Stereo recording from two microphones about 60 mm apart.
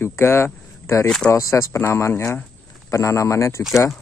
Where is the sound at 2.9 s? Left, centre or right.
Left.